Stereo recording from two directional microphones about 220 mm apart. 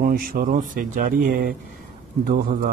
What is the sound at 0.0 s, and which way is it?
Speech, 40° right (ahead or behind).